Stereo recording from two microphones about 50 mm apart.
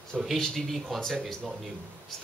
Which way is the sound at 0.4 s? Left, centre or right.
Centre.